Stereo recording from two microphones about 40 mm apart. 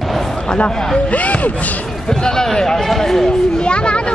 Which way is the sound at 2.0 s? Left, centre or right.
Centre.